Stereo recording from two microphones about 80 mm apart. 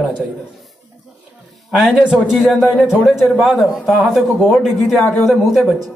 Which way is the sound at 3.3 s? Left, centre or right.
Centre.